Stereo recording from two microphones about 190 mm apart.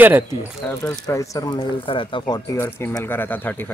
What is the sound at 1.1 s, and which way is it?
Speech, 15° left (ahead or behind).